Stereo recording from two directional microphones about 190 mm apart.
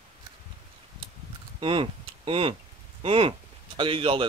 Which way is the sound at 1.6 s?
30° right (ahead or behind).